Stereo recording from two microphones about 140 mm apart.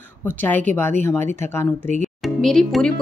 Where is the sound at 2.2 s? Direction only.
Centre (ahead or behind).